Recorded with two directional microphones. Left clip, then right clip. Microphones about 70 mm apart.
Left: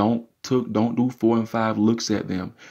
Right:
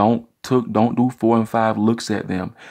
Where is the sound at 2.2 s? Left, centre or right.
Right.